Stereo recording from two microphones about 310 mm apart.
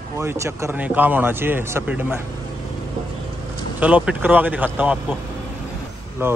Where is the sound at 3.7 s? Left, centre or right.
Centre.